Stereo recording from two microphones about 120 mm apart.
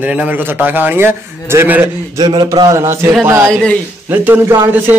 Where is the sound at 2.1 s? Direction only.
35° right (ahead or behind).